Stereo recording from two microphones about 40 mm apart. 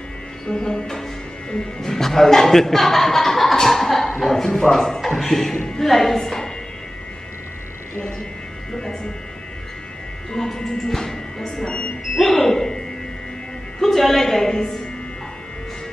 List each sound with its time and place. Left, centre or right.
0.5 s a man's voice: centre
3.6 s a sound: centre
4.2 s a man's voice: centre
8.7 s a man's voice: centre
10.3 s a man's voice: centre
11.6 s speech: left
12.2 s a man's voice: centre